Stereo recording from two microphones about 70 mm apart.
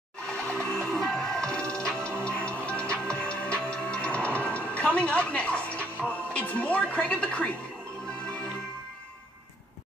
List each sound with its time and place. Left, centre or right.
0.5 s music: centre
6.3 s speech: centre